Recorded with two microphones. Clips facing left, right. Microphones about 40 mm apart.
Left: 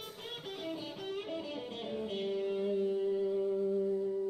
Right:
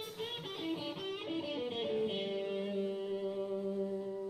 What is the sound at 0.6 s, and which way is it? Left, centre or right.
Music, centre.